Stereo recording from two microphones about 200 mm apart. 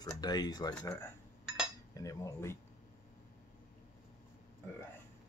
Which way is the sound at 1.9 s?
15° left (ahead or behind).